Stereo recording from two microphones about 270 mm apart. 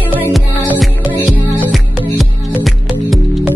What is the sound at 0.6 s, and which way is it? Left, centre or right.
Music, centre.